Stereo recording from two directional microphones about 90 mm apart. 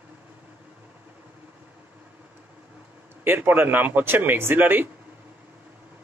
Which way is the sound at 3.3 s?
25° right (ahead or behind).